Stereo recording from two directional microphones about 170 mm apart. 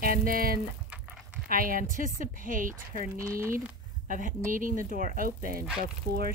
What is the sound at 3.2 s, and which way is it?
Speech, 15° right (ahead or behind).